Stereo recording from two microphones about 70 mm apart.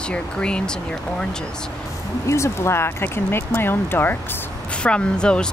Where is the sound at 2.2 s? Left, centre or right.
Left.